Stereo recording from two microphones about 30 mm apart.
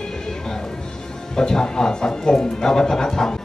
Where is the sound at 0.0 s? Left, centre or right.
Left.